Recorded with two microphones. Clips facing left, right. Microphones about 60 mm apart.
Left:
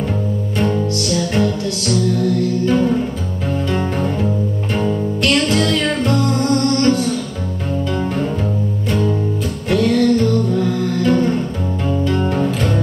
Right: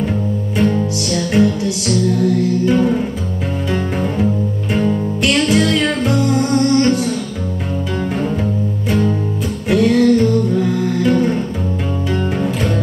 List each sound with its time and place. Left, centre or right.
1.1 s music: centre
5.2 s music: centre
9.7 s music: centre
12.4 s music: centre